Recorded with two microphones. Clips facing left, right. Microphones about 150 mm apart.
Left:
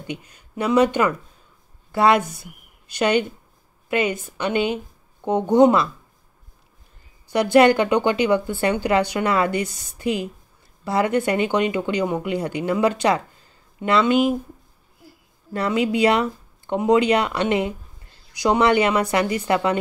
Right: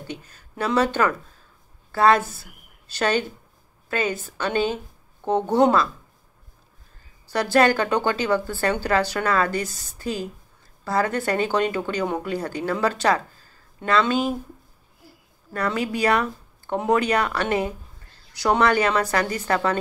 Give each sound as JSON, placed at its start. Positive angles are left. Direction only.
{"t": 0.0, "sound": "a woman's voice", "side_deg": 15}
{"t": 7.2, "sound": "speech", "side_deg": 20}
{"t": 15.5, "sound": "speech", "side_deg": 25}